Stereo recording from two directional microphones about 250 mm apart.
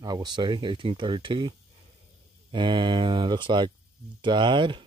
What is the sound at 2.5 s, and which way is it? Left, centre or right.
Speech, centre.